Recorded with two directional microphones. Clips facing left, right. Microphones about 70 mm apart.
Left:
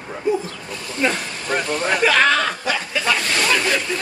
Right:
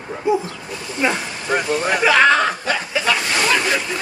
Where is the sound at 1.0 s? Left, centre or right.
Centre.